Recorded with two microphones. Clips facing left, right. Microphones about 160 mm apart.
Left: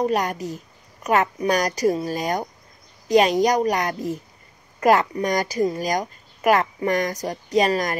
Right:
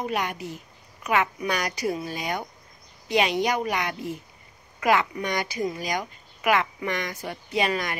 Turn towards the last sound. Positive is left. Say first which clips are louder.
# left 6 dB
turn(degrees=40)  # may be behind; listen again after turning